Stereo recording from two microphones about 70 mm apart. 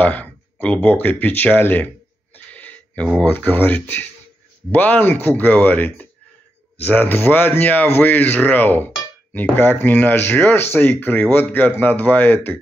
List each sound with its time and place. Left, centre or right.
0.0 s speech: left
2.3 s a sound: left
3.3 s speech: left